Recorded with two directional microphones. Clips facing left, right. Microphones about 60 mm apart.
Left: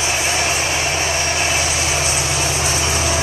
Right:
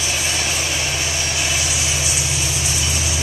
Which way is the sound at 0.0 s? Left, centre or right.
Left.